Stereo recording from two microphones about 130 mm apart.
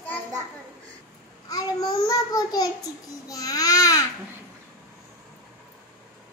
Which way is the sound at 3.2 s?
25° left (ahead or behind).